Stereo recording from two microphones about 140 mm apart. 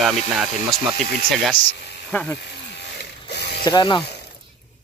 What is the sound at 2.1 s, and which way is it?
Speech, 10° left (ahead or behind).